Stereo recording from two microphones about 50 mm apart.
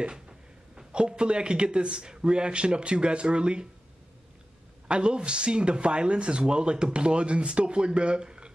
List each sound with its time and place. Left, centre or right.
0.0 s speech: centre
4.8 s speech: centre